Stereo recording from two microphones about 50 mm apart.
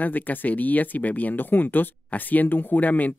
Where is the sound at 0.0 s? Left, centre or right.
Left.